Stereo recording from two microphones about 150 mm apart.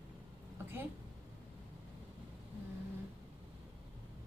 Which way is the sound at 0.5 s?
15° right (ahead or behind).